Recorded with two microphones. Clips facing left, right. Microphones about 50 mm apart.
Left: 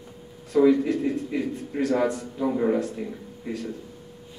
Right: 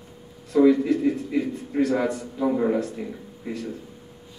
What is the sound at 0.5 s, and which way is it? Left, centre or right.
A man's voice, centre.